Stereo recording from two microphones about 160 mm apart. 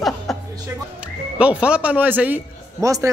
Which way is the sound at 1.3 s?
5° right (ahead or behind).